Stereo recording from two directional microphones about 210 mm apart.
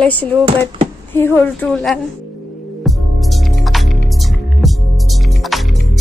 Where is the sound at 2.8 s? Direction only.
Centre (ahead or behind).